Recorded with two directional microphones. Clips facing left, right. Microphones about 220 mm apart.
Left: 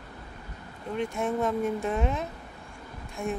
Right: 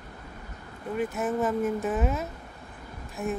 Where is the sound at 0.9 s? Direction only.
5° right (ahead or behind).